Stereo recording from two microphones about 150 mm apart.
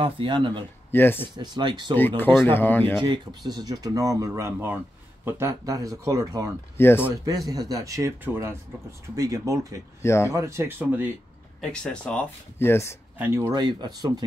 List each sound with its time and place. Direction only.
0.0 s speech: 35° right (ahead or behind)
0.9 s speech: 15° left (ahead or behind)
1.2 s speech: 30° right (ahead or behind)
2.0 s speech: 15° left (ahead or behind)
3.0 s speech: 30° right (ahead or behind)
6.8 s speech: 15° left (ahead or behind)
7.2 s speech: 25° right (ahead or behind)
10.0 s speech: 20° left (ahead or behind)
10.3 s speech: 20° right (ahead or behind)
11.6 s speech: 5° left (ahead or behind)
13.2 s speech: 15° right (ahead or behind)
13.6 s speech: 30° right (ahead or behind)